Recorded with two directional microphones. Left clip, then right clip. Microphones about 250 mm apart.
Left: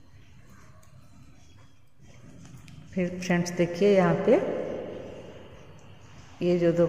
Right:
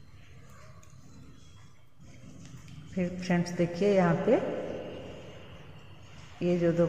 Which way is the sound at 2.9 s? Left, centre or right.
Left.